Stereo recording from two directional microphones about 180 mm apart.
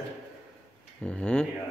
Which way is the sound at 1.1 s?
5° left (ahead or behind).